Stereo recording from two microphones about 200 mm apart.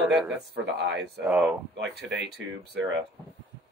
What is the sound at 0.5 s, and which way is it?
Speech, 60° right (ahead or behind).